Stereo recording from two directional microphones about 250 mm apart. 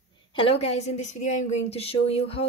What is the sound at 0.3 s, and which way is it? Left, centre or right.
Speech, left.